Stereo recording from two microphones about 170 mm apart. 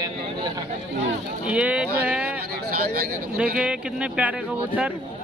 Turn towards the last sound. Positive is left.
turn(degrees=-5)  # may be behind; listen again after turning